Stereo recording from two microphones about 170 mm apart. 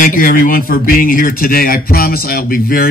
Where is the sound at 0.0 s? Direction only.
55° left (ahead or behind).